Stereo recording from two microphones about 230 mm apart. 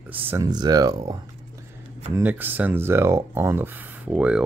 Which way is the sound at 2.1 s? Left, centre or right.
Centre.